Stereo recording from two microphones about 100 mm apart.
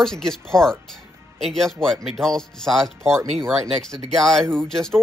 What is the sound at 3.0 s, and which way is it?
Speech, 25° right (ahead or behind).